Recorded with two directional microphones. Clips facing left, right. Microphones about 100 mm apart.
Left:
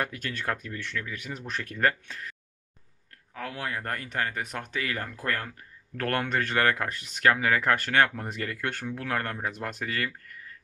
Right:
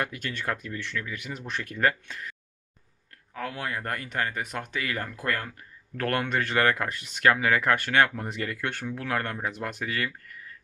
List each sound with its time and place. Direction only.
0.0 s speech: 45° left (ahead or behind)
3.3 s speech: 35° right (ahead or behind)
3.6 s speech: 35° left (ahead or behind)